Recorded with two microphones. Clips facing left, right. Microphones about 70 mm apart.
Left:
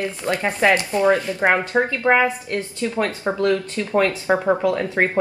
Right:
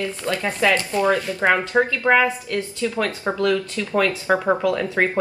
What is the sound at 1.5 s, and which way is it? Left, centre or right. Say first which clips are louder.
A woman's voice: right 1 dB; left.